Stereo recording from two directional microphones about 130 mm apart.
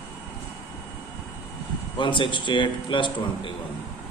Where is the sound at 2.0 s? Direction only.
40° left (ahead or behind).